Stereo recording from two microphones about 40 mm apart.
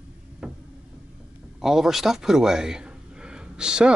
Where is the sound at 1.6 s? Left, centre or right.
Centre.